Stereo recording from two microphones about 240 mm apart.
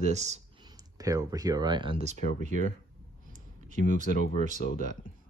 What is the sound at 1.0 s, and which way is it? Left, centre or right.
Speech, centre.